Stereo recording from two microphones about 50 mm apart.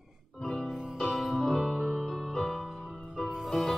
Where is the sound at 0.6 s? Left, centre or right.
Centre.